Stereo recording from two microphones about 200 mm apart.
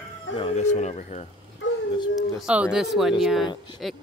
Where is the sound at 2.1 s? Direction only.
5° right (ahead or behind).